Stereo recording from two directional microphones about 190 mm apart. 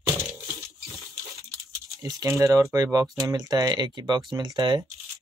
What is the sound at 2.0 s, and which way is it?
Speech, 15° right (ahead or behind).